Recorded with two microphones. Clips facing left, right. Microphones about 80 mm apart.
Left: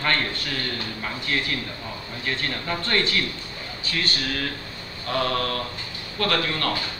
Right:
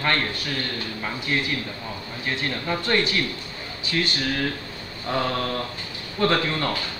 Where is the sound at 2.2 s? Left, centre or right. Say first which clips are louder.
Right 1 dB; centre.